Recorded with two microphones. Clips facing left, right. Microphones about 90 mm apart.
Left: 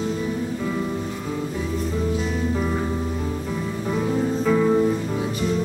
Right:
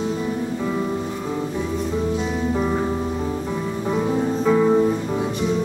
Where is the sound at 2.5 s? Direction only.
15° right (ahead or behind).